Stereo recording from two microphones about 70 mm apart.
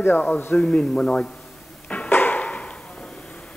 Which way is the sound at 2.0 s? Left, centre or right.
Left.